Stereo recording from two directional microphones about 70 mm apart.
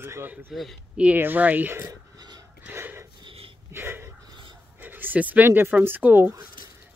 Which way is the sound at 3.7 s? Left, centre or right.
Right.